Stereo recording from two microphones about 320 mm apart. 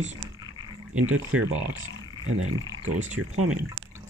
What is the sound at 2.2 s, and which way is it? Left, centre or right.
Speech, right.